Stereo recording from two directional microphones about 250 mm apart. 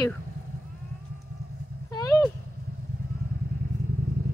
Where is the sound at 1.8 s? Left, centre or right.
Centre.